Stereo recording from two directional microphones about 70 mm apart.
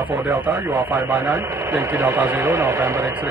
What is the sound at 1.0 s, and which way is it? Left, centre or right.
Speech, right.